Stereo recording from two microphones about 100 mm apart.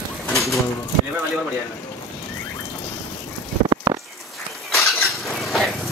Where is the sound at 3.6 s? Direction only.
35° right (ahead or behind).